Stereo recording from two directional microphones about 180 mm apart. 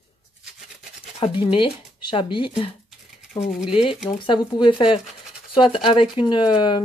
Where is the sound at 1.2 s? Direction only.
30° left (ahead or behind).